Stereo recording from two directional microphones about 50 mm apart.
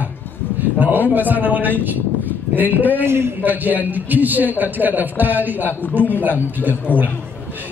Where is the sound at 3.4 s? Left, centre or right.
Right.